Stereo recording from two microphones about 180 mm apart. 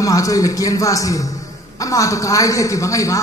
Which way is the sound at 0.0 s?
20° left (ahead or behind).